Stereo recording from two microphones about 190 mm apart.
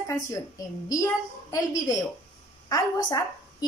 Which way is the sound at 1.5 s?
15° left (ahead or behind).